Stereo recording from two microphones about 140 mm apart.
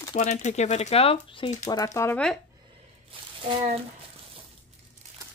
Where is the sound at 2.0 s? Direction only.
20° left (ahead or behind).